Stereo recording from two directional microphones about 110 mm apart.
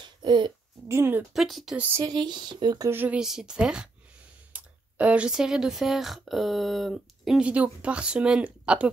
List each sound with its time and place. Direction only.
0.0 s a sound: 45° right (ahead or behind)
0.8 s speech: 20° right (ahead or behind)
1.3 s speech: centre (ahead or behind)
2.0 s speech: 45° right (ahead or behind)
2.9 s speech: 20° right (ahead or behind)
3.2 s speech: 5° right (ahead or behind)